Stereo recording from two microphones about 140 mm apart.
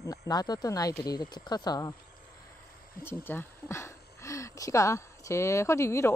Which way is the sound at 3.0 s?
15° left (ahead or behind).